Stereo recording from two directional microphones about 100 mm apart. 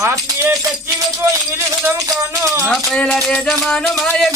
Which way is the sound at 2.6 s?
5° left (ahead or behind).